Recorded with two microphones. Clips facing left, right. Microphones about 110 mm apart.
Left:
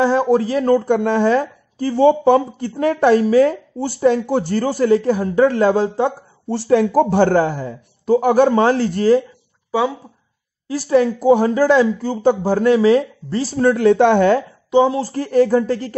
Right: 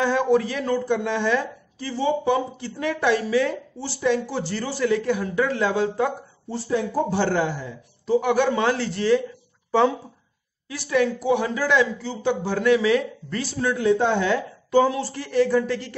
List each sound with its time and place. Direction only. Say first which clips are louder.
0.0 s a sound: left 5 dB; 35° left (ahead or behind)
0.7 s speech: left 8 dB; 55° left (ahead or behind)
6.5 s speech: left 10 dB; 75° left (ahead or behind)
7.2 s speech: left 8 dB; 50° left (ahead or behind)
9.7 s speech: even; 5° left (ahead or behind)
10.7 s speech: left 7 dB; 35° left (ahead or behind)
13.7 s speech: left 8 dB; 65° left (ahead or behind)
14.7 s speech: left 4 dB; 20° left (ahead or behind)
15.0 s speech: left 6 dB; 40° left (ahead or behind)